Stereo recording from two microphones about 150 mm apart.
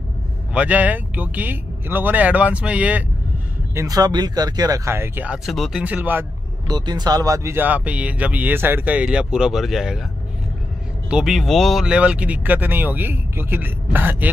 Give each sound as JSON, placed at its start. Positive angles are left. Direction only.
{"t": 0.5, "sound": "speech", "side_deg": -10}
{"t": 3.7, "sound": "speech", "side_deg": -25}
{"t": 6.7, "sound": "speech", "side_deg": -25}
{"t": 11.1, "sound": "speech", "side_deg": -5}